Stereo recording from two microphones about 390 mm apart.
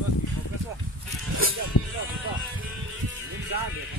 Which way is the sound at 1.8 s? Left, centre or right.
Left.